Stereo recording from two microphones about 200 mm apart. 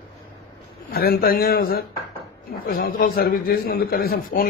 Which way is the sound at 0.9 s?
50° left (ahead or behind).